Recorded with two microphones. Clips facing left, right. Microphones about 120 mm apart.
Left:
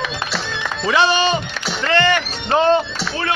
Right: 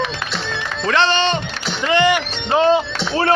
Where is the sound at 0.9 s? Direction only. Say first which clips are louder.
Left 1 dB; 10° left (ahead or behind).